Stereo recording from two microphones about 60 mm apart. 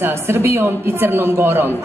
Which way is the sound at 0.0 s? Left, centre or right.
Right.